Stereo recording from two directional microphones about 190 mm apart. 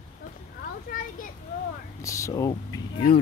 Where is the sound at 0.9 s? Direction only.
50° left (ahead or behind).